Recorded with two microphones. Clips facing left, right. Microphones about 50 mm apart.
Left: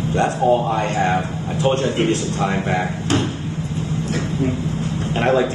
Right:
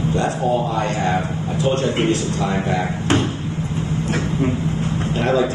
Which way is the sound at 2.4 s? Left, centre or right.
Left.